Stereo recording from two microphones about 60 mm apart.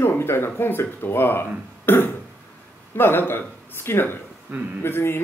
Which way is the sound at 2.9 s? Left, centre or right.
Left.